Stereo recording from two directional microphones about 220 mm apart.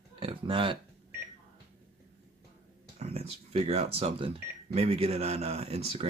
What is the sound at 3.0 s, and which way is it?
Speech, 30° right (ahead or behind).